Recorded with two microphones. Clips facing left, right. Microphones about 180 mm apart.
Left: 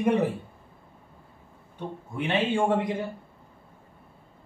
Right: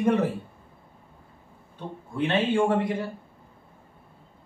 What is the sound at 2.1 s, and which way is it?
Speech, 15° left (ahead or behind).